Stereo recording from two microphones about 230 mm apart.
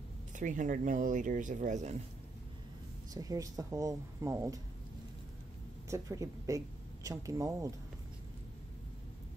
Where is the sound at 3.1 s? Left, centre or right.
Centre.